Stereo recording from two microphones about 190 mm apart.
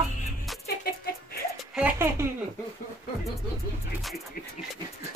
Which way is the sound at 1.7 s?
10° right (ahead or behind).